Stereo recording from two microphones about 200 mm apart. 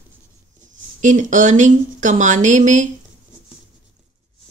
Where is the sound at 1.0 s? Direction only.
40° right (ahead or behind).